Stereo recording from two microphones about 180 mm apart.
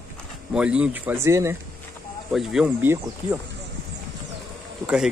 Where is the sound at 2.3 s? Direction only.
Centre (ahead or behind).